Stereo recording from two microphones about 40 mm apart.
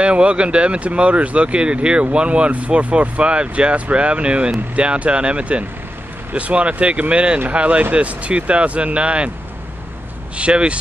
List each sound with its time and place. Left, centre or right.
0.0 s speech: right
10.3 s speech: right